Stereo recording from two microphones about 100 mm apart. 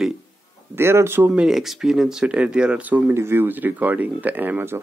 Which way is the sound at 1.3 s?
5° right (ahead or behind).